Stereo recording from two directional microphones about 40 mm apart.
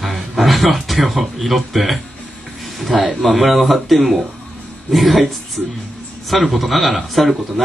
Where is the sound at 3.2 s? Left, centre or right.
Centre.